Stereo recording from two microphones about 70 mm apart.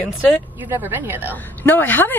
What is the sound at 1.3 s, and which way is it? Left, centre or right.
Speech, left.